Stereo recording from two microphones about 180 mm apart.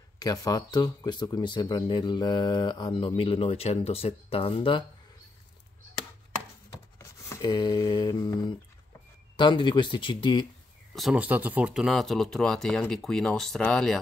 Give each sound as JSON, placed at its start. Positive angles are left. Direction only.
{"t": 0.2, "sound": "speech", "side_deg": 20}
{"t": 7.0, "sound": "a sound", "side_deg": 20}
{"t": 9.4, "sound": "speech", "side_deg": 25}
{"t": 11.0, "sound": "speech", "side_deg": -5}